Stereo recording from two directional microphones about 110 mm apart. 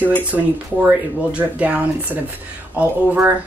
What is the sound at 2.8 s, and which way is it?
Speech, 15° right (ahead or behind).